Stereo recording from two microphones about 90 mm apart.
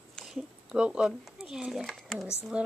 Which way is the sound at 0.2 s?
5° right (ahead or behind).